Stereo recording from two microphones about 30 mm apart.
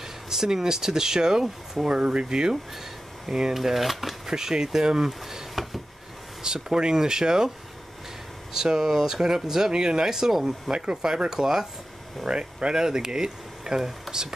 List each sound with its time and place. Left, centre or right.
0.5 s speech: centre
1.9 s speech: right
2.2 s speech: right
3.5 s speech: centre
4.3 s speech: centre
6.4 s speech: right
8.5 s speech: centre
10.1 s speech: centre
10.4 s speech: right
11.2 s speech: centre
12.3 s speech: right
14.1 s a sound: centre